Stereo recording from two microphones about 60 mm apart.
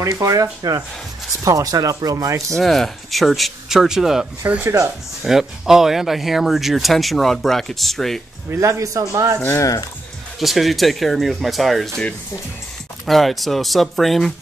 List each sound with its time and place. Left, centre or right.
0.0 s speech: right
1.4 s speech: right
2.5 s speech: centre
8.5 s speech: right
9.5 s speech: left
10.4 s speech: centre
13.0 s speech: centre